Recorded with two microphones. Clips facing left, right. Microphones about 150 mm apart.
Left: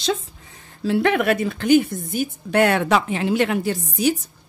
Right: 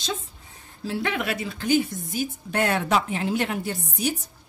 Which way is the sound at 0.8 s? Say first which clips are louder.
Left 9 dB; 60° left (ahead or behind).